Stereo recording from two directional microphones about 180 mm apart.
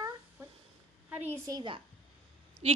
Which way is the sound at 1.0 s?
10° right (ahead or behind).